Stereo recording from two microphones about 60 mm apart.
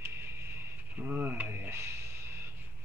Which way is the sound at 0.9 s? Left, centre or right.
Right.